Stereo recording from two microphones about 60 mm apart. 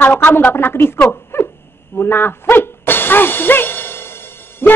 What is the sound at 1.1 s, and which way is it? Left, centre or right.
Sneeze, left.